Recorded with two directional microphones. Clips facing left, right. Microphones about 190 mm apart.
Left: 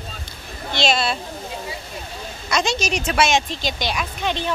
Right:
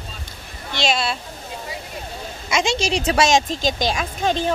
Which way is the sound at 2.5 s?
25° right (ahead or behind).